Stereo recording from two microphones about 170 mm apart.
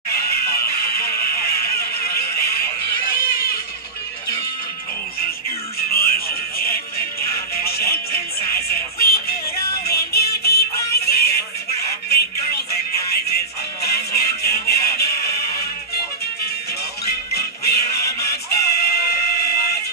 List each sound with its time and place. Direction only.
0.7 s a sound: 65° left (ahead or behind)
5.8 s music: 60° left (ahead or behind)
17.0 s music: 65° left (ahead or behind)